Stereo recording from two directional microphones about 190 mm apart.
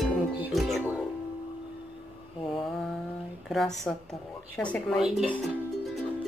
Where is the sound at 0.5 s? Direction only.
Centre (ahead or behind).